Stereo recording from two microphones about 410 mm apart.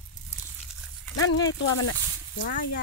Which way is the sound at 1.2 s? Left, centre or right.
Left.